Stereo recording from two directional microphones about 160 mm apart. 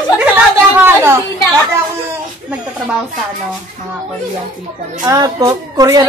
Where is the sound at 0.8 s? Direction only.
15° right (ahead or behind).